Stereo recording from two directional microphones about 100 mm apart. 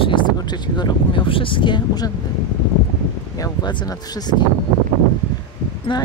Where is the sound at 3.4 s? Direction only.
45° left (ahead or behind).